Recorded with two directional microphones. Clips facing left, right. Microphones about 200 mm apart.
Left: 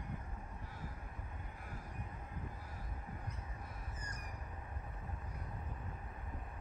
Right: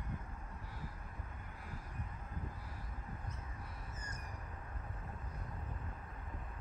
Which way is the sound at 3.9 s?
25° right (ahead or behind).